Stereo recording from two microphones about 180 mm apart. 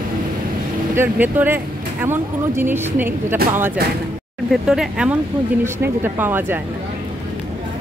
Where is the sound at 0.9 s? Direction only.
10° right (ahead or behind).